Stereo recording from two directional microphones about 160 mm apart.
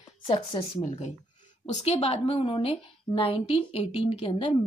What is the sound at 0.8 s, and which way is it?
A woman's voice, 45° left (ahead or behind).